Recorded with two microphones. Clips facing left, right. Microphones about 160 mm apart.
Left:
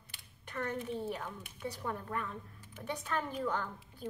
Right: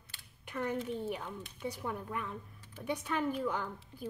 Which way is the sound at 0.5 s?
10° right (ahead or behind).